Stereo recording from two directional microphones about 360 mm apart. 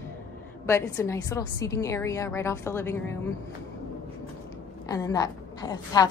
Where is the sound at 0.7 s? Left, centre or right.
Centre.